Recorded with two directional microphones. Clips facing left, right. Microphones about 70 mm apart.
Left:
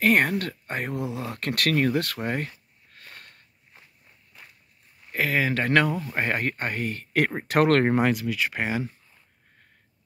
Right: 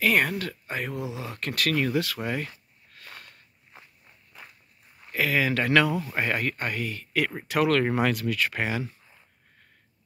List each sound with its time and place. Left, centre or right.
0.0 s speech: left
0.9 s speech: centre
1.2 s speech: left
2.2 s speech: left
5.1 s speech: left
5.9 s speech: centre
6.1 s speech: left
7.9 s speech: left